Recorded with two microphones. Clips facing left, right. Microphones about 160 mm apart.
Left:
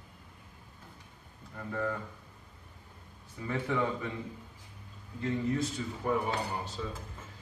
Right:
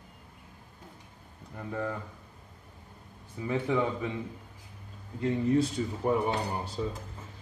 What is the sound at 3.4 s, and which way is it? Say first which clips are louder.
Speech: right 3 dB; 15° right (ahead or behind).